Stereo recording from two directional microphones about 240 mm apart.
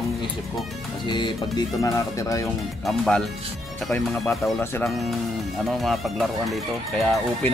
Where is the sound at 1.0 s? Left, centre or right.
Centre.